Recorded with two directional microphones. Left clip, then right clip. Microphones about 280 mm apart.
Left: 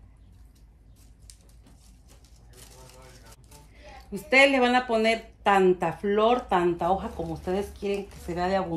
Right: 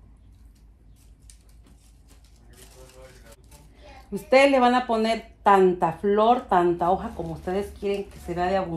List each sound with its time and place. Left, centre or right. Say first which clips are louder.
4.1 s a woman's voice: right 2 dB; centre